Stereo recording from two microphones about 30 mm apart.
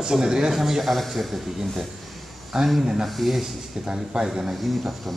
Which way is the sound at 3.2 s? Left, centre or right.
Centre.